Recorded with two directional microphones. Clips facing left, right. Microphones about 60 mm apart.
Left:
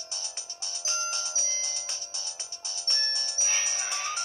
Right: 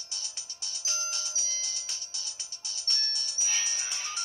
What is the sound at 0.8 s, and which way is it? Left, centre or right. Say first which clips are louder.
Music: left 5 dB; left.